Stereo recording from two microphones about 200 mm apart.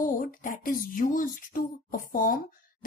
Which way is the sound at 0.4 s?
40° left (ahead or behind).